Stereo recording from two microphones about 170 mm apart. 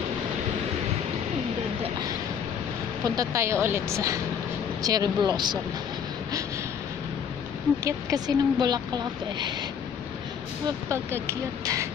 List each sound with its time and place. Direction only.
3.2 s a woman's voice: 15° right (ahead or behind)
7.8 s speech: 20° right (ahead or behind)
10.9 s a woman's voice: 15° right (ahead or behind)